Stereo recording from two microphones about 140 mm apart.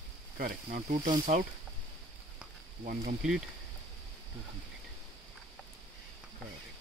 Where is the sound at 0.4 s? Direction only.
85° right.